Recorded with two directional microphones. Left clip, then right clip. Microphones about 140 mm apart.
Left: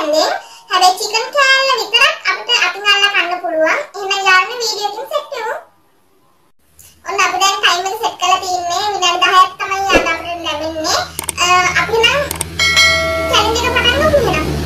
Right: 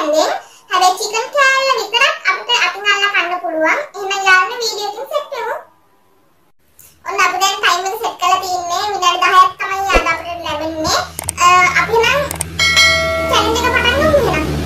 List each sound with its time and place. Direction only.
0.0 s a child's voice: 10° right (ahead or behind)
7.1 s a child's voice: 15° right (ahead or behind)
12.3 s cat: centre (ahead or behind)
13.3 s music: 15° right (ahead or behind)